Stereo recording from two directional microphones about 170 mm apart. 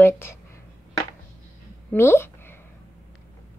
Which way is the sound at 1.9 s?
15° left (ahead or behind).